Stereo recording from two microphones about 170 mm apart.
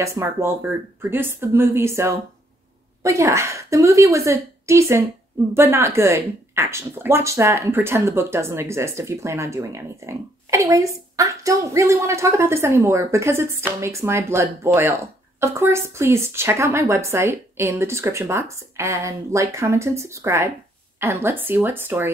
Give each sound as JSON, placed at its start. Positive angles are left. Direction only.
{"t": 0.0, "sound": "speech", "side_deg": -15}